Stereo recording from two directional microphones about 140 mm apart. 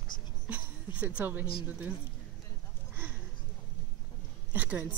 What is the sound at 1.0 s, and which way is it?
Speech, 10° right (ahead or behind).